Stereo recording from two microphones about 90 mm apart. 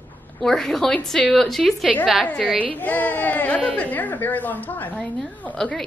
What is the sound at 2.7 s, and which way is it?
A woman's voice, 20° left (ahead or behind).